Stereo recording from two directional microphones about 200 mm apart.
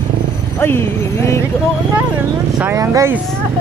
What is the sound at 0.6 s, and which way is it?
Speech, 10° left (ahead or behind).